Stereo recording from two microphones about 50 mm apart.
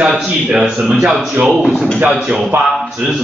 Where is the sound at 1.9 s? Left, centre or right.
Right.